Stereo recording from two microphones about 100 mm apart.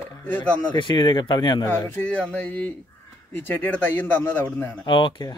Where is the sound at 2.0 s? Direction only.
10° left (ahead or behind).